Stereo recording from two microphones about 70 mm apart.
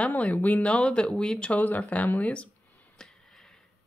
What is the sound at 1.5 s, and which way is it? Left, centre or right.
Speech, left.